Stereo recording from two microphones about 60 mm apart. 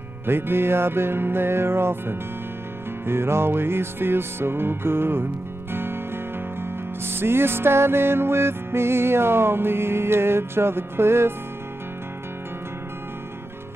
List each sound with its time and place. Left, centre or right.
0.3 s music: right